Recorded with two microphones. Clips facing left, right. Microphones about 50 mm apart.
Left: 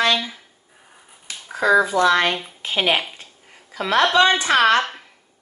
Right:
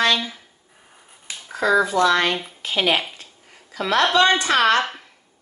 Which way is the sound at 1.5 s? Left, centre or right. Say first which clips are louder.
Left 2 dB; centre.